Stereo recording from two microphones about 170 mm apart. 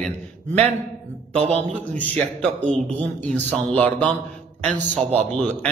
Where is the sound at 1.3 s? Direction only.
35° right (ahead or behind).